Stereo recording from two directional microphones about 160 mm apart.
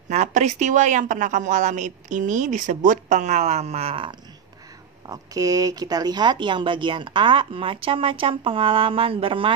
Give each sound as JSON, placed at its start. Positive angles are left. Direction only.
{"t": 0.1, "sound": "speech", "side_deg": -45}
{"t": 5.0, "sound": "speech", "side_deg": -20}